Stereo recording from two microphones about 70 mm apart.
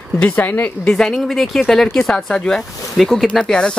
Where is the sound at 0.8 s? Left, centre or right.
Centre.